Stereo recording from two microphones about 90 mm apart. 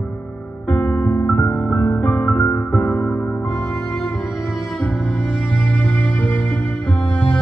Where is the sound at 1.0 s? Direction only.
30° left (ahead or behind).